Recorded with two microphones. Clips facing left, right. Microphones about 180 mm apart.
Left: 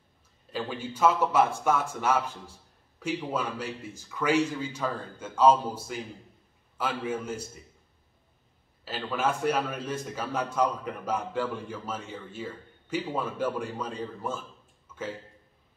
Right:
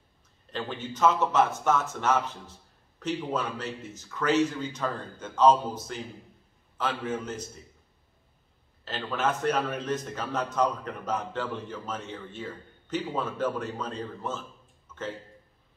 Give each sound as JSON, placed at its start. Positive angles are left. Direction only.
{"t": 0.5, "sound": "a man's voice", "side_deg": 10}
{"t": 8.8, "sound": "a man's voice", "side_deg": 10}